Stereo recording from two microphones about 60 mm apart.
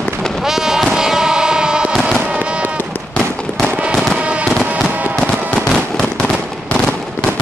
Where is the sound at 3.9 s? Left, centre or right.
Centre.